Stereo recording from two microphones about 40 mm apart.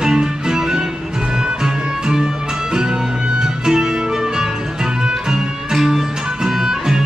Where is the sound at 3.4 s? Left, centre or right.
Centre.